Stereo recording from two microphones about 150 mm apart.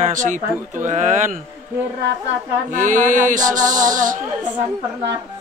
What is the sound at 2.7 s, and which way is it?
Speech, 60° right (ahead or behind).